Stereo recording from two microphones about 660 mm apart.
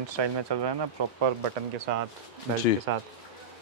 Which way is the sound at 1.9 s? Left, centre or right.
Right.